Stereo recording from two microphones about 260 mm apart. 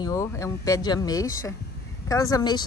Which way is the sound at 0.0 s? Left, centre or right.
Centre.